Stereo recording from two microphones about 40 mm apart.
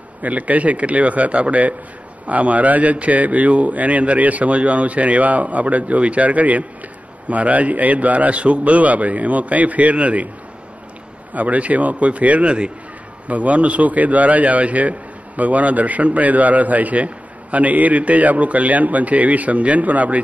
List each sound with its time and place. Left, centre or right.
0.2 s a man's voice: right
11.3 s a man's voice: right
13.3 s a man's voice: right